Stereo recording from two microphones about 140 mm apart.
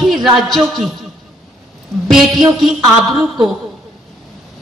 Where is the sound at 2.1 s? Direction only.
Centre (ahead or behind).